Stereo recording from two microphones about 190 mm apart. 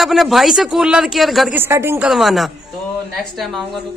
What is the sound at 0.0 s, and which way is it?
Speech, centre (ahead or behind).